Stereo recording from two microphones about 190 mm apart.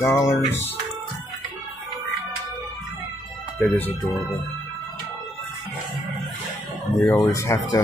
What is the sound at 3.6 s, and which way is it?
Speech, centre (ahead or behind).